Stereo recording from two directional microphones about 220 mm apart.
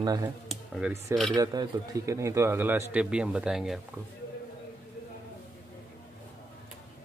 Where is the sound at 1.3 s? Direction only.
15° right (ahead or behind); by 3.8 s centre (ahead or behind).